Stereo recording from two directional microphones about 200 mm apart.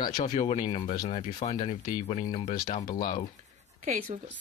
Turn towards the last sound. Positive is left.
turn(degrees=-40)  # may be behind; listen again after turning